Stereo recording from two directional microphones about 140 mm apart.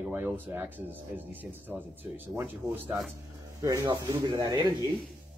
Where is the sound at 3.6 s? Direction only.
25° right (ahead or behind).